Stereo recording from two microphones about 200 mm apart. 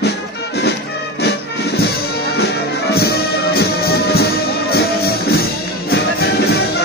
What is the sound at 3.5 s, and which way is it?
Music, 50° left (ahead or behind).